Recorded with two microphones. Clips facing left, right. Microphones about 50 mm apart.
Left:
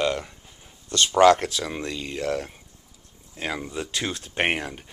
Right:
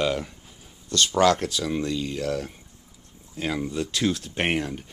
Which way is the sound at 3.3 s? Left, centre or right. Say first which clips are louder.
Right 3 dB; centre.